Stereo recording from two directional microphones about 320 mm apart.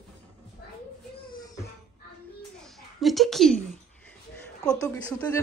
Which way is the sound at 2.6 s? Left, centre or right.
Centre.